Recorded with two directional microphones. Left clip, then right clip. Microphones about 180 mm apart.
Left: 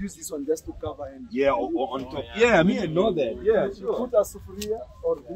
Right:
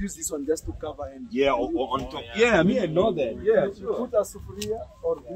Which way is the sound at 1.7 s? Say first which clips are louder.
Right 1 dB; 35° right (ahead or behind).